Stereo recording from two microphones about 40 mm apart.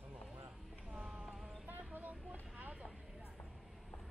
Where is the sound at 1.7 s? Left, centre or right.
Right.